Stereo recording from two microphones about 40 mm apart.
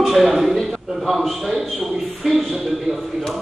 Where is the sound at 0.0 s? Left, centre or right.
Centre.